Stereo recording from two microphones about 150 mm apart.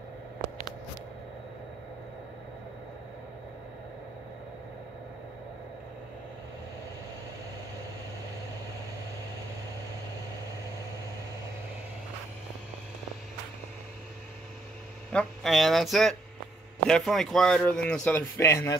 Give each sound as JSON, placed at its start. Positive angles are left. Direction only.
{"t": 15.1, "sound": "speech", "side_deg": 0}
{"t": 18.4, "sound": "speech", "side_deg": 20}